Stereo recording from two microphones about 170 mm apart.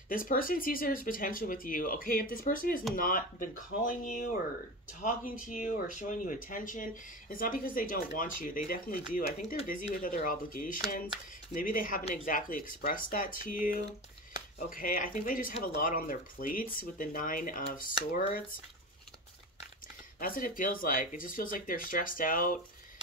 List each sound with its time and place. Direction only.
0.1 s speech: 55° left (ahead or behind)
20.2 s speech: 55° left (ahead or behind)